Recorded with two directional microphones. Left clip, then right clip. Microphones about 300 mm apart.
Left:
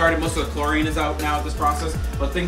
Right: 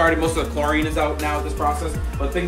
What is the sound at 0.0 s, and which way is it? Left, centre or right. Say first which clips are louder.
Speech: right 1 dB; centre.